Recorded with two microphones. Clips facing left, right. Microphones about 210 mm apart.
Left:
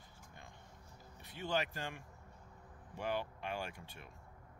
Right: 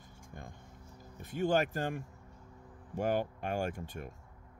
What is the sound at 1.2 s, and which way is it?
Speech, 45° right (ahead or behind).